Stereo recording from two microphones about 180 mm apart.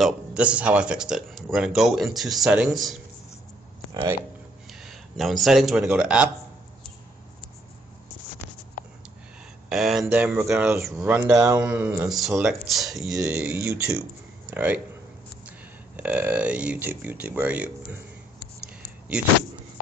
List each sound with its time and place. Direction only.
0.0 s speech: 5° right (ahead or behind)
4.7 s speech: centre (ahead or behind)
9.7 s a sound: centre (ahead or behind)
10.0 s speech: 10° right (ahead or behind)
13.2 s speech: 15° right (ahead or behind)
16.0 s speech: 10° right (ahead or behind)